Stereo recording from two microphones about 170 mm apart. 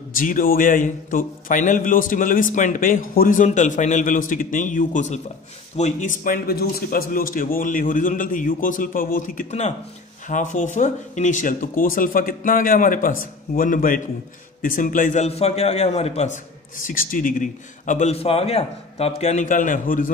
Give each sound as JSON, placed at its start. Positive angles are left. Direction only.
{"t": 0.2, "sound": "a man's voice", "side_deg": 55}
{"t": 16.8, "sound": "a man's voice", "side_deg": 55}